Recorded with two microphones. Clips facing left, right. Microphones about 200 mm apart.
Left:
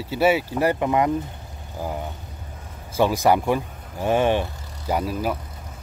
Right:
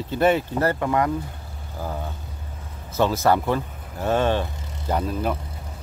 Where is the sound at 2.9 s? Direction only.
15° left (ahead or behind).